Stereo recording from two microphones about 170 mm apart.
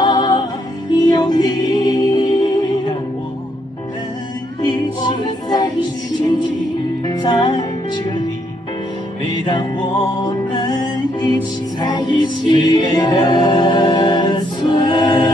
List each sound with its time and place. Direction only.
0.0 s music: 25° left (ahead or behind)
4.6 s music: 25° left (ahead or behind)
7.1 s music: 25° left (ahead or behind)
9.5 s music: 25° left (ahead or behind)